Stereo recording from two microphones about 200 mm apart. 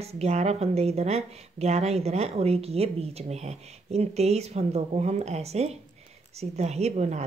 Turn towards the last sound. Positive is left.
turn(degrees=-35)  # may be behind; listen again after turning